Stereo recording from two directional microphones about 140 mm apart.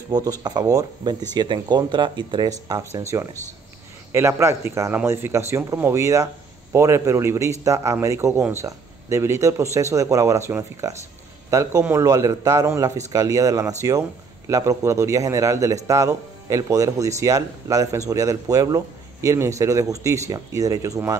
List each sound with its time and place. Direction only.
0.1 s a man's voice: 25° right (ahead or behind)